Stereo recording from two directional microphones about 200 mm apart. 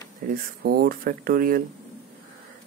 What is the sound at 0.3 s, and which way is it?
Speech, 50° right (ahead or behind).